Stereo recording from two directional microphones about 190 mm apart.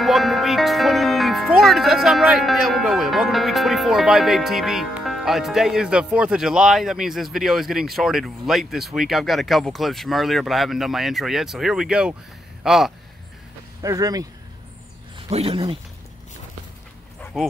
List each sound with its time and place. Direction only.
0.0 s speech: centre (ahead or behind)
13.8 s speech: 20° right (ahead or behind)
15.1 s speech: 30° right (ahead or behind)
17.2 s dog: centre (ahead or behind)